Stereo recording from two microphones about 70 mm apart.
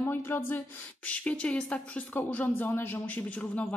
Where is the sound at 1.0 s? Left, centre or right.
Centre.